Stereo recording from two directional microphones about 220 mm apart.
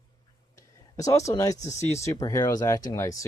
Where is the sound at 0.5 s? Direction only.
15° left (ahead or behind).